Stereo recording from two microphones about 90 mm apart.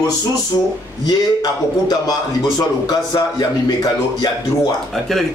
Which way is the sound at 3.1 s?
60° left (ahead or behind).